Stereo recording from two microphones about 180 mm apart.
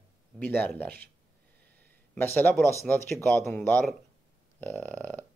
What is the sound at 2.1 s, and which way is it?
Speech, 10° left (ahead or behind).